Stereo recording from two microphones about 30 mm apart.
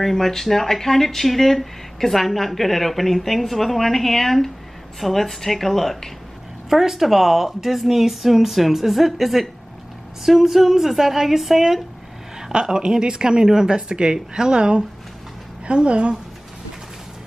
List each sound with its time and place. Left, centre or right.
0.0 s speech: centre
6.7 s speech: centre
12.5 s speech: right